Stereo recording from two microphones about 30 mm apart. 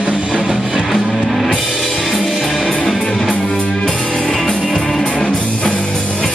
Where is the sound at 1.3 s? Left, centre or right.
Centre.